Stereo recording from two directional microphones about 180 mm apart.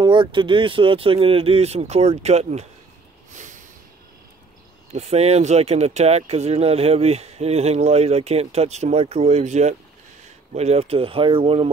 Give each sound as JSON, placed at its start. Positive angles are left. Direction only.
{"t": 0.0, "sound": "speech", "side_deg": -25}
{"t": 3.3, "sound": "snort", "side_deg": -45}
{"t": 4.9, "sound": "speech", "side_deg": -35}